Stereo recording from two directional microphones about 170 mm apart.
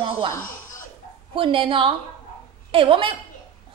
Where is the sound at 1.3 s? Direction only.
30° right (ahead or behind).